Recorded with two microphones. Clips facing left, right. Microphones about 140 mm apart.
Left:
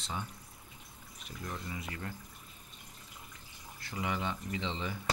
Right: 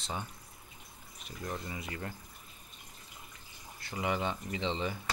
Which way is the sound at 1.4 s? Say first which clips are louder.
Right 2 dB; 30° right (ahead or behind).